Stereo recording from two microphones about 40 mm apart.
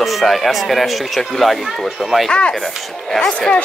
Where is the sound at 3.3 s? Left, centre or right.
Left.